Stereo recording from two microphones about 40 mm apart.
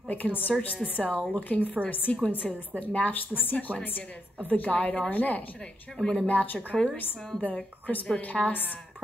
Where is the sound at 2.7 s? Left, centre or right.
Left.